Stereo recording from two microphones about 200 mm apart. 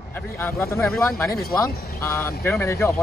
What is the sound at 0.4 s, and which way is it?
Speech, 10° left (ahead or behind).